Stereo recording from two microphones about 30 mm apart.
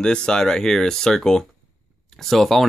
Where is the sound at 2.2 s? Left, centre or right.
Centre.